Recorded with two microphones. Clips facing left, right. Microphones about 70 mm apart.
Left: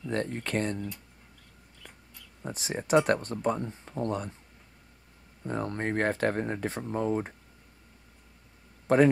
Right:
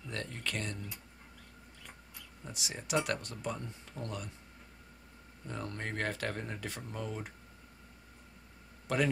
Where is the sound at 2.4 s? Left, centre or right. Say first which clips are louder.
Left 11 dB; left.